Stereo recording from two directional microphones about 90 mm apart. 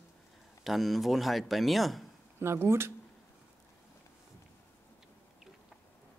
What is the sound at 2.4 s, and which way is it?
Speech, 30° right (ahead or behind).